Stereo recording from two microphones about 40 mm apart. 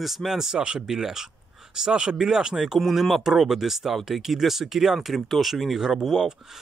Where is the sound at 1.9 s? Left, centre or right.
Right.